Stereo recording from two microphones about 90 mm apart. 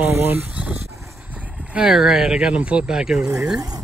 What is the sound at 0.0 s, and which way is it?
Speech, 25° right (ahead or behind).